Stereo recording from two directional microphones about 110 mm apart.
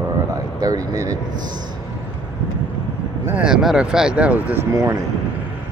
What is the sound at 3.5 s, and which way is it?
Speech, 5° right (ahead or behind).